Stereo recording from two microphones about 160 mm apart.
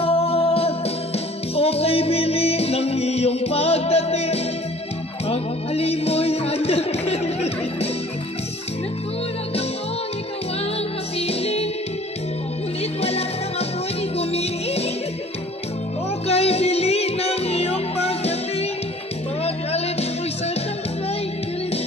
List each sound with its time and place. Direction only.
0.0 s music: 40° left (ahead or behind)
11.1 s music: 40° left (ahead or behind)
13.0 s music: 40° left (ahead or behind)
16.3 s music: 40° left (ahead or behind)